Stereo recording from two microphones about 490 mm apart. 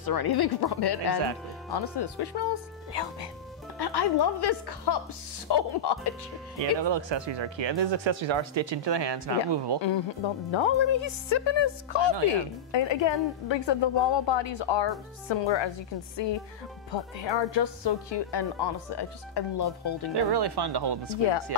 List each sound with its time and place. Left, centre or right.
0.0 s speech: left
6.8 s speech: right
9.8 s speech: left
20.2 s speech: right